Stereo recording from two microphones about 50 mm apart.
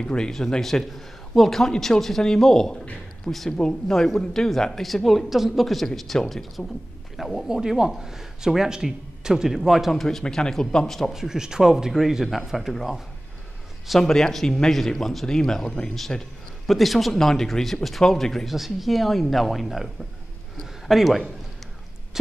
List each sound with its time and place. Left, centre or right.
0.0 s a man's voice: centre
7.4 s a man's voice: centre
10.0 s a man's voice: centre
11.1 s a man's voice: centre
13.8 s a man's voice: centre
16.6 s speech: centre